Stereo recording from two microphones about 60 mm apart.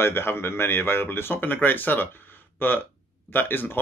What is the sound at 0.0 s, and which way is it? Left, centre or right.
Speech, left.